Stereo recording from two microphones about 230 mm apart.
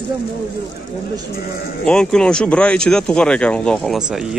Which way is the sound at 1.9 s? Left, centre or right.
Centre.